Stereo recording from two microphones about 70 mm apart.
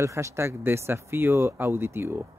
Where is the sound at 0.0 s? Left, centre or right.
Right.